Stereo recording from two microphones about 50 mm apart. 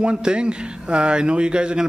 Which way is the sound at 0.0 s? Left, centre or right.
Centre.